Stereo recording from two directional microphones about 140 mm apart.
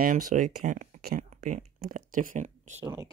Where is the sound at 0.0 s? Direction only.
85° right; by 2.8 s 60° right (ahead or behind).